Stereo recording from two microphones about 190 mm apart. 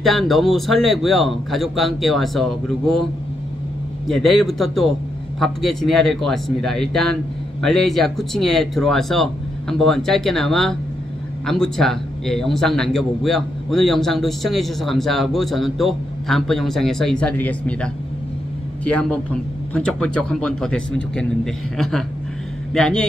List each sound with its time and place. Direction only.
0.0 s a man's voice: centre (ahead or behind)
4.1 s a man's voice: centre (ahead or behind)
18.9 s a man's voice: 5° left (ahead or behind)